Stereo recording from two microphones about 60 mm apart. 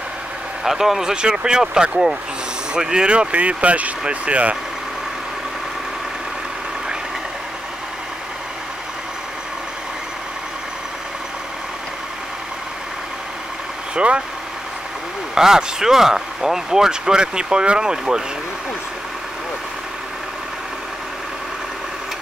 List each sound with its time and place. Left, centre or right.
0.7 s speech: centre; by 4.6 s right
13.9 s speech: centre
15.3 s speech: centre